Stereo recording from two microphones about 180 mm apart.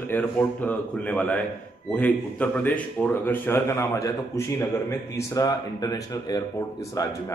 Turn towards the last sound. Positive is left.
turn(degrees=20)  # may be behind; listen again after turning